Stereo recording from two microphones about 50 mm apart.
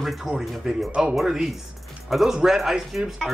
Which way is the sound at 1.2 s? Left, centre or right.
Centre.